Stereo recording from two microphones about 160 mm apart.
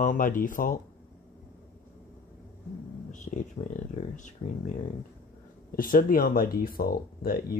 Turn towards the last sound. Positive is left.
turn(degrees=70)  # may be behind; listen again after turning